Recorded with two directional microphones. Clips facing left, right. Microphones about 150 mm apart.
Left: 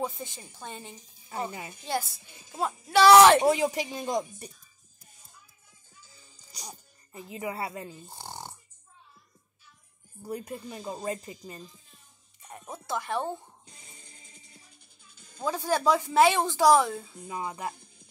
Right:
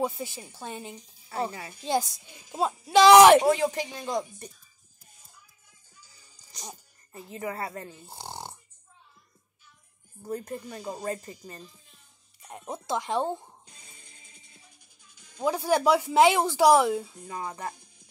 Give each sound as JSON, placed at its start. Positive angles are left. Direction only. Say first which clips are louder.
{"t": 0.0, "sound": "speech", "louder": "right 4 dB", "side_deg": -10}
{"t": 1.5, "sound": "a woman's voice", "louder": "left 1 dB", "side_deg": 20}
{"t": 1.9, "sound": "speech", "louder": "right 5 dB", "side_deg": -15}
{"t": 3.4, "sound": "speech", "louder": "even", "side_deg": 15}
{"t": 6.0, "sound": "music", "louder": "left 3 dB", "side_deg": 20}
{"t": 7.1, "sound": "speech", "louder": "even", "side_deg": 15}
{"t": 8.1, "sound": "snoring", "louder": "right 2 dB", "side_deg": -15}
{"t": 10.2, "sound": "speech", "louder": "right 2 dB", "side_deg": 10}
{"t": 10.8, "sound": "speech", "louder": "right 1 dB", "side_deg": -15}
{"t": 11.1, "sound": "speech", "louder": "even", "side_deg": 15}
{"t": 12.4, "sound": "a sound", "louder": "right 4 dB", "side_deg": -15}
{"t": 13.7, "sound": "music", "louder": "left 1 dB", "side_deg": 25}
{"t": 15.4, "sound": "speech", "louder": "right 2 dB", "side_deg": -15}
{"t": 17.2, "sound": "speech", "louder": "left 1 dB", "side_deg": 10}